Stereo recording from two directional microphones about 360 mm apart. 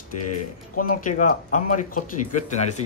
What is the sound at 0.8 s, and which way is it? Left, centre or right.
Speech, left.